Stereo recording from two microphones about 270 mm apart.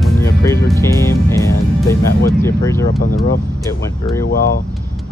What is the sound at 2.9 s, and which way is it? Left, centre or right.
Speech, left.